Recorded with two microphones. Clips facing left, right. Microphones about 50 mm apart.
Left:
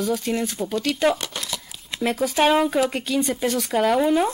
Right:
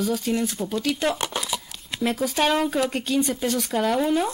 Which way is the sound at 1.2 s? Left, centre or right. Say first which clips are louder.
Right 3 dB; centre.